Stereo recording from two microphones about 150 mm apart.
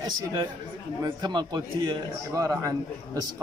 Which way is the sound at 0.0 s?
25° right (ahead or behind).